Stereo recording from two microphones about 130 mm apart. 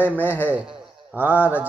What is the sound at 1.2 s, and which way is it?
Speech, 15° right (ahead or behind).